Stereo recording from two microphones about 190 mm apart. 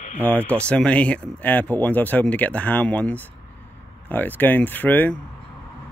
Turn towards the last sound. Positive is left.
turn(degrees=10)  # may be behind; listen again after turning